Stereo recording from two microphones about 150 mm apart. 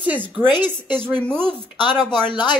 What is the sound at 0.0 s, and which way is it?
Speech, 10° right (ahead or behind).